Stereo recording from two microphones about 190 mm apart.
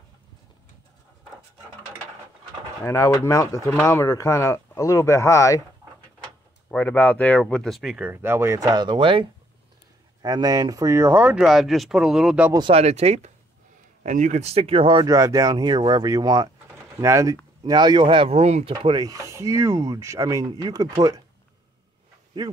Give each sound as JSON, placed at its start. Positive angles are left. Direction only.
{"t": 2.8, "sound": "speech", "side_deg": 15}
{"t": 6.7, "sound": "speech", "side_deg": 10}
{"t": 12.5, "sound": "speech", "side_deg": -30}
{"t": 22.3, "sound": "speech", "side_deg": -20}